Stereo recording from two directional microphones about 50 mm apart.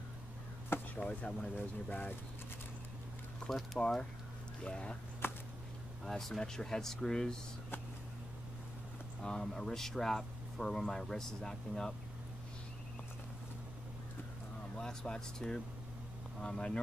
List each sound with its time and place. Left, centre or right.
0.9 s speech: left
3.4 s speech: centre
3.8 s speech: centre
6.0 s speech: centre
9.2 s speech: centre
14.8 s speech: centre